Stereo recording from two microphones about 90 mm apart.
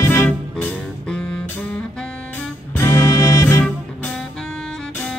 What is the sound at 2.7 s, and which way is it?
Music, 35° left (ahead or behind).